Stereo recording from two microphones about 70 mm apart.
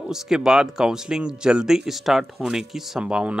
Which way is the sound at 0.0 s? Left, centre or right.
Centre.